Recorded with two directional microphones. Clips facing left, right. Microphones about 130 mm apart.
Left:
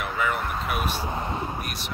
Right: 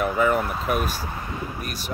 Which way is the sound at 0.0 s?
40° right (ahead or behind).